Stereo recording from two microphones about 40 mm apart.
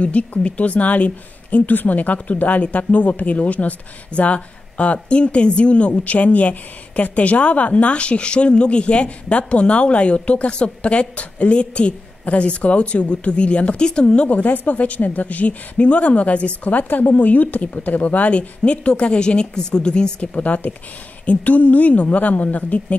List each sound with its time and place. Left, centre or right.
0.0 s a woman's voice: left
14.4 s a woman's voice: left
20.2 s a woman's voice: left